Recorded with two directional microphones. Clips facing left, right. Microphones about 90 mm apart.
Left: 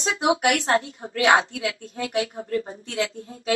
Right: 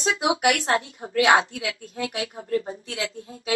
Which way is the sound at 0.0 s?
35° left (ahead or behind).